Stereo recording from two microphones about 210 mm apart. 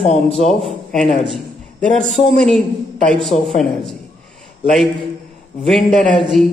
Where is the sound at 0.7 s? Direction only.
Centre (ahead or behind).